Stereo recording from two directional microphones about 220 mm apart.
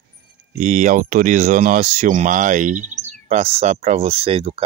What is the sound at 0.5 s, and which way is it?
Speech, 35° right (ahead or behind).